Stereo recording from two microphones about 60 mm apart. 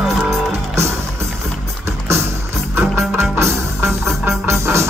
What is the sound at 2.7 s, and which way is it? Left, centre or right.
Music, right.